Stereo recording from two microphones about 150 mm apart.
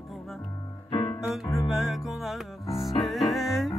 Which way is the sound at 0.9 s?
30° left (ahead or behind).